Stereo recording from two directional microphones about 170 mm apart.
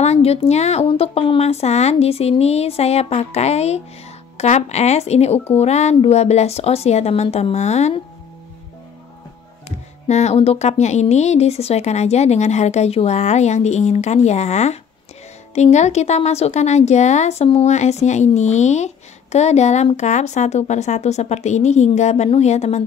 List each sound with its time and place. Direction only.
0.0 s speech: 40° left (ahead or behind)
9.7 s speech: 40° left (ahead or behind)